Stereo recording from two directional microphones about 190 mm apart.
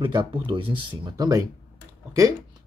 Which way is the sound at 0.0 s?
25° right (ahead or behind).